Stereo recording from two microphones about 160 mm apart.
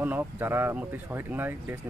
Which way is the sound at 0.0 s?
10° right (ahead or behind).